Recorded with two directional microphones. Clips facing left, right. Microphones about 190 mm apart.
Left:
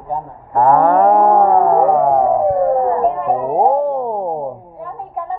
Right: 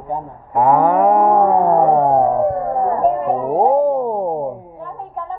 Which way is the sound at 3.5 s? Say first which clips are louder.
Right 2 dB; 5° right (ahead or behind).